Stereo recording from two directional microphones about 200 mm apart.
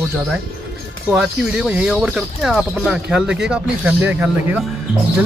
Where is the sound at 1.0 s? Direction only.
5° right (ahead or behind).